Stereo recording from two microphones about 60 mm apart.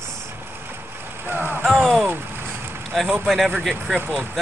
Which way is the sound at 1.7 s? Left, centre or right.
Centre.